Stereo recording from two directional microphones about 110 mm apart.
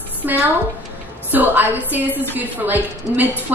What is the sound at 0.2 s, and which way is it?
A woman's voice, 15° right (ahead or behind).